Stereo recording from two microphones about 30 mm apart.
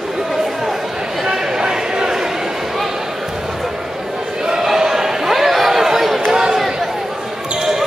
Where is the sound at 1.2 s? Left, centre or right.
Right.